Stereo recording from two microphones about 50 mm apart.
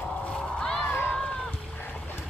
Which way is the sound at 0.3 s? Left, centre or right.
Centre.